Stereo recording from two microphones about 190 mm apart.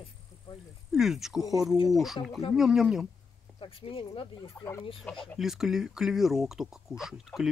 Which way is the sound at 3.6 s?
30° left (ahead or behind).